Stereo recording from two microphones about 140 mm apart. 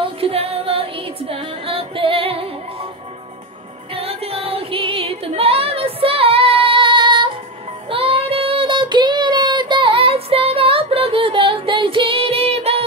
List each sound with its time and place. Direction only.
0.0 s music: 45° right (ahead or behind)
3.9 s music: 45° right (ahead or behind)
7.9 s child singing: 40° right (ahead or behind)